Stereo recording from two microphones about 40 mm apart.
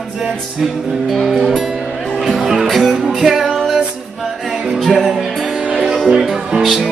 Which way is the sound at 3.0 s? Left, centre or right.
Centre.